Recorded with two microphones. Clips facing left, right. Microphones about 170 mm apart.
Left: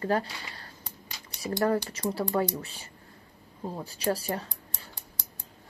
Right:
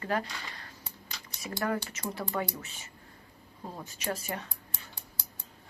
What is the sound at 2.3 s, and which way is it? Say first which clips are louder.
Speech: left 6 dB; 35° left (ahead or behind).